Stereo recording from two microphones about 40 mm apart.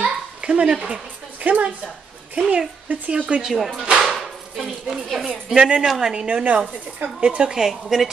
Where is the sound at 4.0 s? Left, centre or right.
Centre.